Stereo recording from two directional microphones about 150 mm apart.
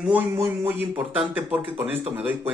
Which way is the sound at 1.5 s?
40° right (ahead or behind).